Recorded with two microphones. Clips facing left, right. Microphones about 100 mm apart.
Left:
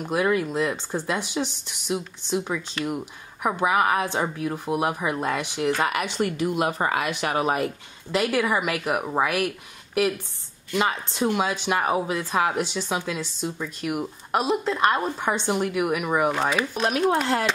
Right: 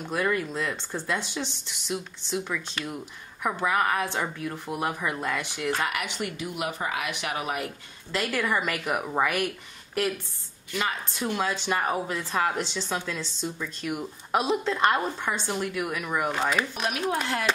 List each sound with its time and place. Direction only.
0.0 s speech: 10° left (ahead or behind); by 6.5 s 30° left (ahead or behind)
6.5 s speech: 45° left (ahead or behind)
7.6 s speech: 15° left (ahead or behind)
10.7 s speech: 20° left (ahead or behind); by 15.1 s 5° left (ahead or behind)
15.1 s speech: 20° left (ahead or behind); by 16.8 s 5° left (ahead or behind)
17.2 s speech: 35° left (ahead or behind)